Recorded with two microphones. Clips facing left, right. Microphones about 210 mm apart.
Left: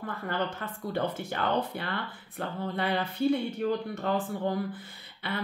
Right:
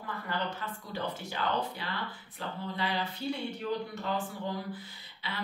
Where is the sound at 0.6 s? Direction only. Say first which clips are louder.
Left 6 dB; 55° left (ahead or behind).